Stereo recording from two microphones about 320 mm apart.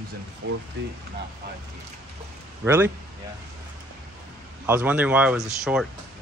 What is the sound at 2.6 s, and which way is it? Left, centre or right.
Speech, centre.